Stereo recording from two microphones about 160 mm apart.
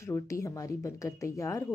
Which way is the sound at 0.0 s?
20° left (ahead or behind).